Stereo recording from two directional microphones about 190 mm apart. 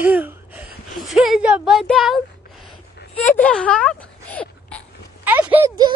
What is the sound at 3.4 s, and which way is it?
Speech, 5° left (ahead or behind).